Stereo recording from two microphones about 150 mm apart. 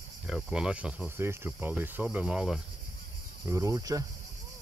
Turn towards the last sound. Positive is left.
turn(degrees=-20)  # may be behind; listen again after turning